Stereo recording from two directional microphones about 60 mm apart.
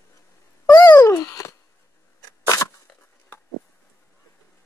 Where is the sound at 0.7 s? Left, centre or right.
Left.